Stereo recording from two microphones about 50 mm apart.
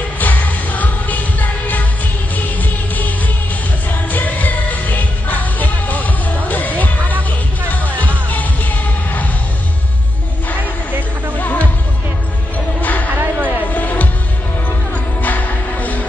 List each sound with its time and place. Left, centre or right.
0.2 s music: left
10.9 s music: right
11.3 s music: left
12.8 s music: left
13.1 s a sound: right
13.7 s music: left
15.2 s music: left